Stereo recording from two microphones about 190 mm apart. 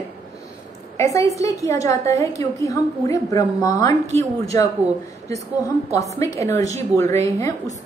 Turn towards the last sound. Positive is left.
turn(degrees=15)  # may be behind; listen again after turning